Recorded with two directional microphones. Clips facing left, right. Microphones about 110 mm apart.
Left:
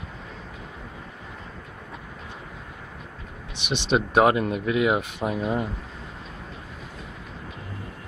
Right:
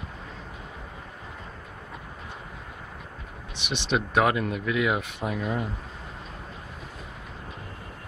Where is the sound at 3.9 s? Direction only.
25° left (ahead or behind).